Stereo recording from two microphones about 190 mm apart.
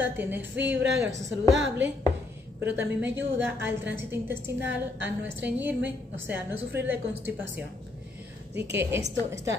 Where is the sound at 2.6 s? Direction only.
10° right (ahead or behind).